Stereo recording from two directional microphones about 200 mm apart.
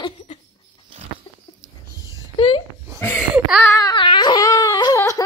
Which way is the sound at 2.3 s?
25° left (ahead or behind).